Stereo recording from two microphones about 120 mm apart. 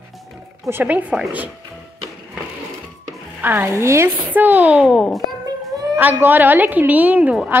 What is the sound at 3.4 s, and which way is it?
A woman's voice, 15° right (ahead or behind).